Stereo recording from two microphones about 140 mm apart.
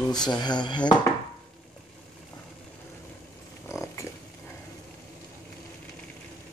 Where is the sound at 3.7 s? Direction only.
20° left (ahead or behind).